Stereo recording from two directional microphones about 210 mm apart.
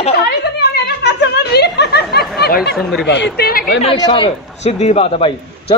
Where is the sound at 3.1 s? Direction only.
50° left (ahead or behind).